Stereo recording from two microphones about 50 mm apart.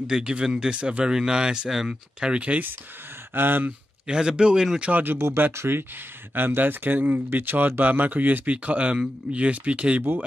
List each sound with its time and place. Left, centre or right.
0.0 s speech: centre
3.3 s speech: right
4.1 s speech: centre
4.9 s speech: right
5.2 s speech: right